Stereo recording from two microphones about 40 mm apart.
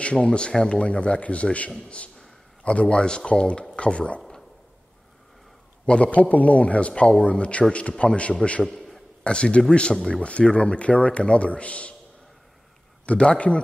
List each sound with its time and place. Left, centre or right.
0.0 s a man's voice: left
5.9 s a man's voice: left
13.0 s speech: left